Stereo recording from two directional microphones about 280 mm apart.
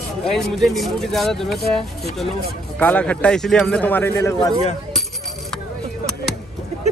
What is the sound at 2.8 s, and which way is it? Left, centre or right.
Speech, centre.